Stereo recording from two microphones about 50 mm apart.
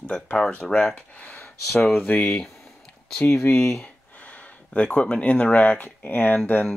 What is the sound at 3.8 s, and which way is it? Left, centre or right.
Speech, left.